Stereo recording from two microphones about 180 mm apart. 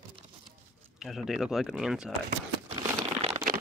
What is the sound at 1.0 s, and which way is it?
Speech, centre (ahead or behind).